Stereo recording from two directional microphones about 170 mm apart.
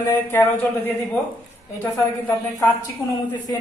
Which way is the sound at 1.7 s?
10° left (ahead or behind).